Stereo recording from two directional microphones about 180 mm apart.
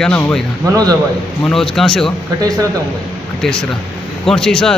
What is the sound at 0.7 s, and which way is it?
Speech, 20° right (ahead or behind).